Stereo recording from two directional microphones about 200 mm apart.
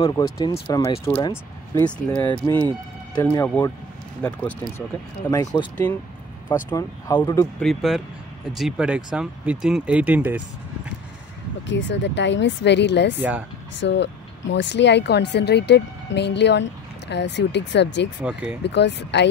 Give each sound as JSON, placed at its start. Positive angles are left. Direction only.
{"t": 0.0, "sound": "speech", "side_deg": 20}
{"t": 5.3, "sound": "speech", "side_deg": 20}
{"t": 7.6, "sound": "speech", "side_deg": 0}
{"t": 11.6, "sound": "speech", "side_deg": 65}
{"t": 18.2, "sound": "speech", "side_deg": -5}
{"t": 18.6, "sound": "speech", "side_deg": 60}